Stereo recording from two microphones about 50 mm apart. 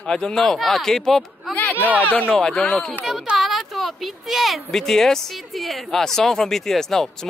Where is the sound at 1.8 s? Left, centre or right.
Right.